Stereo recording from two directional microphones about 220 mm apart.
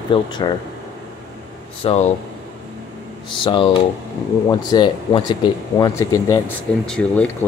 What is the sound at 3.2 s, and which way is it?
Speech, 20° left (ahead or behind).